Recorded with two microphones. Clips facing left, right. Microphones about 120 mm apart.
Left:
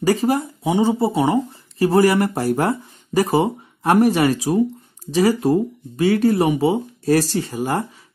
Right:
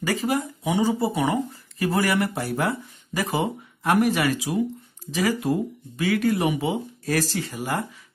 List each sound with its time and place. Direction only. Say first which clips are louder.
0.0 s speech: left 6 dB; 35° left (ahead or behind)